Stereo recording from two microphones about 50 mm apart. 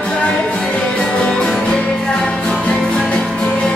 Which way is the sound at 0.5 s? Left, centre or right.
Left.